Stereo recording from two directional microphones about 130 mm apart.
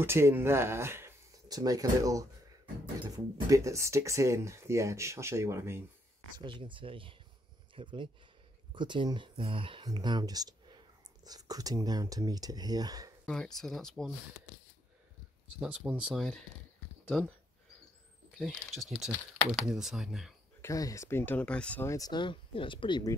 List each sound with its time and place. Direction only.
0.0 s speech: 20° right (ahead or behind)
6.3 s speech: 40° right (ahead or behind)
13.2 s speech: 5° left (ahead or behind)
15.4 s speech: 10° right (ahead or behind)
16.2 s speech: 5° left (ahead or behind)
18.4 s speech: centre (ahead or behind)
20.6 s speech: 25° left (ahead or behind); by 21.8 s 10° left (ahead or behind)
21.8 s speech: 25° left (ahead or behind)